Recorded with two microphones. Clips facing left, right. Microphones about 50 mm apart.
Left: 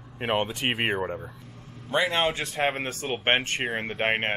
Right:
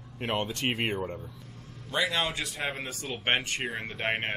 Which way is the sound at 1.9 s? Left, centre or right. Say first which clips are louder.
Left 4 dB; left.